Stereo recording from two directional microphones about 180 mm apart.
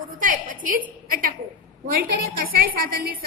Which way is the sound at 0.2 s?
45° right (ahead or behind).